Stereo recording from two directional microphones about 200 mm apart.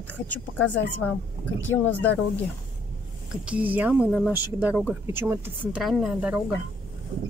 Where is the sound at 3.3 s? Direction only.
5° right (ahead or behind).